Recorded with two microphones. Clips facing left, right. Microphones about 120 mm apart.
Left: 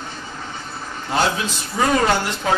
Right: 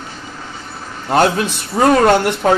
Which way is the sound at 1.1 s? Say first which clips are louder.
Right 7 dB; 55° right (ahead or behind).